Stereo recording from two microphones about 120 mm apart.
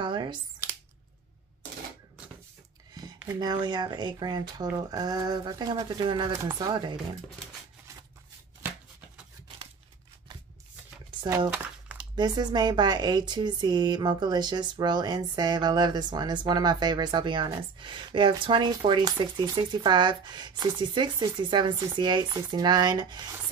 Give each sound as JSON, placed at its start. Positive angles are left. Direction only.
{"t": 0.0, "sound": "a sound", "side_deg": -40}
{"t": 3.3, "sound": "speech", "side_deg": -35}
{"t": 11.2, "sound": "speech", "side_deg": -30}